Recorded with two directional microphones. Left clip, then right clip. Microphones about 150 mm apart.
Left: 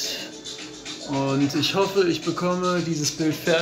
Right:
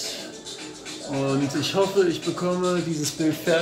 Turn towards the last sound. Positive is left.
turn(degrees=15)  # may be behind; listen again after turning